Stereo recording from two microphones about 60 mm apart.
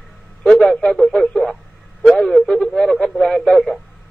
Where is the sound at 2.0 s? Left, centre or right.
Centre.